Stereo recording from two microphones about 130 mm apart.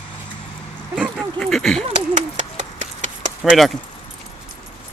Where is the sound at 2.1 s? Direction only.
70° right (ahead or behind).